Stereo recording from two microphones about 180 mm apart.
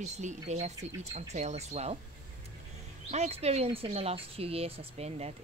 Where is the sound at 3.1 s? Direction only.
35° right (ahead or behind).